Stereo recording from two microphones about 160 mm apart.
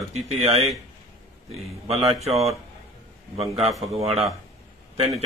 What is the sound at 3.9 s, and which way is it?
Speech, 40° right (ahead or behind).